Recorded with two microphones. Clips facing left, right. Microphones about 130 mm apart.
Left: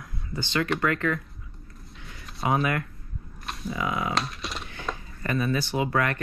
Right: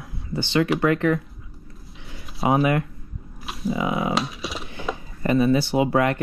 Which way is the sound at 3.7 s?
25° right (ahead or behind).